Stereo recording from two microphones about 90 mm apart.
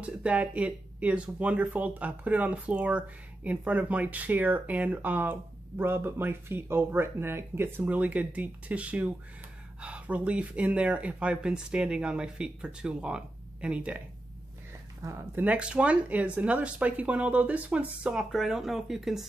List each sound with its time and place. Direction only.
0.0 s speech: 15° right (ahead or behind)
15.0 s speech: 35° right (ahead or behind)
15.3 s speech: 15° right (ahead or behind)
18.1 s speech: 5° right (ahead or behind)